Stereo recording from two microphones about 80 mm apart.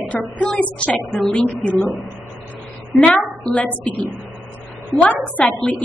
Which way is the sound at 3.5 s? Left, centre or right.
Centre.